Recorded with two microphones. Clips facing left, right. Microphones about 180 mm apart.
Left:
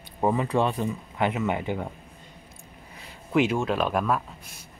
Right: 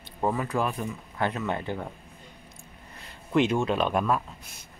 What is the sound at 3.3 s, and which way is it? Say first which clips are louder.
Speech: even; 5° left (ahead or behind).